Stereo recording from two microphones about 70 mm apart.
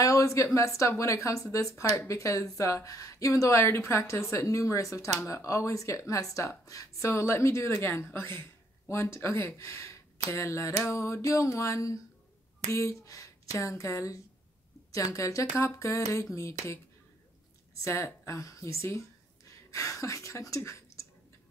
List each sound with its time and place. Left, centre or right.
0.0 s a sound: left
0.6 s speech: left
17.8 s speech: left